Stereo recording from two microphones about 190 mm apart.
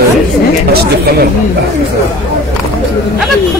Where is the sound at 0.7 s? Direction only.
55° right (ahead or behind).